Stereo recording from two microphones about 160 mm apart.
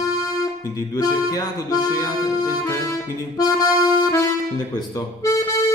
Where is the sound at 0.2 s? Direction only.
20° left (ahead or behind).